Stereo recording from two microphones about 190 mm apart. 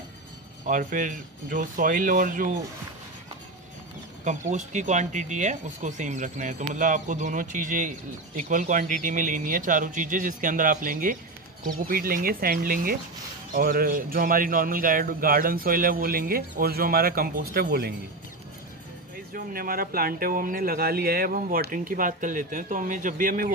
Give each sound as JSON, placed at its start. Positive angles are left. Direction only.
{"t": 0.7, "sound": "a man's voice", "side_deg": -45}
{"t": 4.2, "sound": "a man's voice", "side_deg": -40}
{"t": 19.3, "sound": "a man's voice", "side_deg": -50}